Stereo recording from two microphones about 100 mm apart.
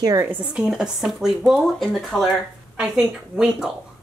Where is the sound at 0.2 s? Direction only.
15° right (ahead or behind).